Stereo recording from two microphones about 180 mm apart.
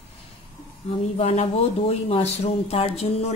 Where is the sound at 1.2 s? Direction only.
35° left (ahead or behind).